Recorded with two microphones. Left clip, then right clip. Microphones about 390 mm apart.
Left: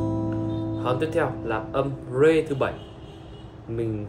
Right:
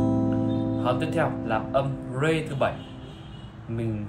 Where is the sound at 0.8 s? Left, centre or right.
Centre.